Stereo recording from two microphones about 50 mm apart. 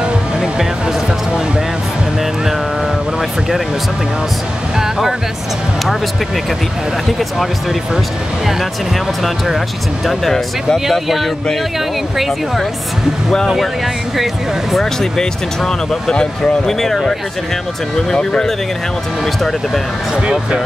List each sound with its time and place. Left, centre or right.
0.0 s music: centre
3.2 s a sound: centre
4.7 s speech: centre
10.0 s speech: centre
14.1 s speech: centre
15.0 s speech: centre
18.1 s speech: centre
19.2 s speech: centre
20.2 s speech: centre